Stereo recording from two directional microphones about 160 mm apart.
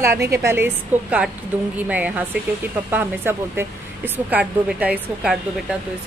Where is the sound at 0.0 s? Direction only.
15° right (ahead or behind).